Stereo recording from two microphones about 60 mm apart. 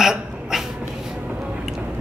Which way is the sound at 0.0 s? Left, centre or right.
Centre.